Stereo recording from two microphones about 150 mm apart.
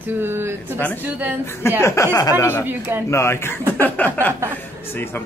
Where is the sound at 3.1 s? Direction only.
15° left (ahead or behind).